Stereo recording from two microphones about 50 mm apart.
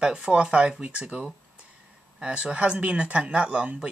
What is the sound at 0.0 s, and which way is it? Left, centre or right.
Speech, centre.